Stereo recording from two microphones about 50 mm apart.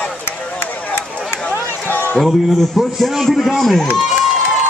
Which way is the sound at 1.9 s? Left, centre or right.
Left.